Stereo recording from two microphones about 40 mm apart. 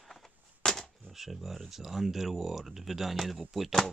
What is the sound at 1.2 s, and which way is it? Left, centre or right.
Speech, centre.